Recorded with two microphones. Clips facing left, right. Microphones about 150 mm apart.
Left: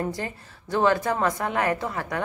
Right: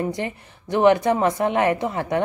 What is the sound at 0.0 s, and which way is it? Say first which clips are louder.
A woman's voice: right 4 dB; 20° right (ahead or behind).